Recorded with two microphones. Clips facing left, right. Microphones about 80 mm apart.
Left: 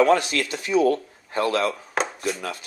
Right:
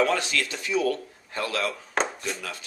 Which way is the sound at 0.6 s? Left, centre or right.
Left.